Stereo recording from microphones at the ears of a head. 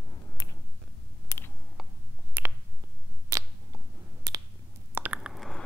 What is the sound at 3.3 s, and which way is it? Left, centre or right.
Finger snapping, right.